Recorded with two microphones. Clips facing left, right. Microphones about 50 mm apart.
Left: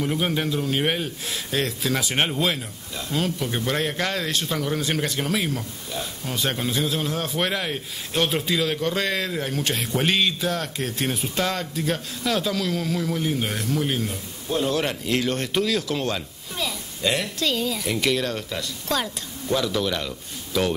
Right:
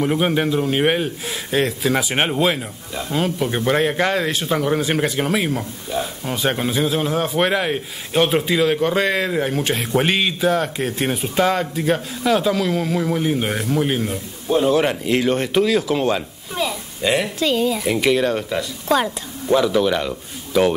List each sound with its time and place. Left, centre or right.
0.0 s a man's voice: right